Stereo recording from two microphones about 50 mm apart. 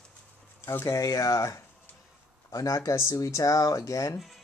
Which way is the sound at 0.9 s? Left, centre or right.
Left.